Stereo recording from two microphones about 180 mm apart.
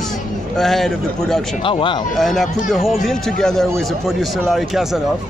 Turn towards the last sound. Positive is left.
turn(degrees=0)  # may be behind; listen again after turning